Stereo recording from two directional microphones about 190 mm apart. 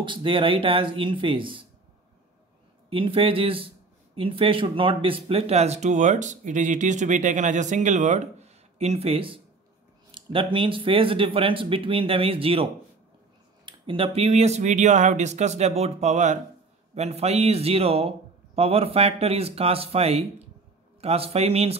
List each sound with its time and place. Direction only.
0.0 s speech: 25° right (ahead or behind)
2.9 s speech: 30° right (ahead or behind)
13.7 s speech: 25° right (ahead or behind)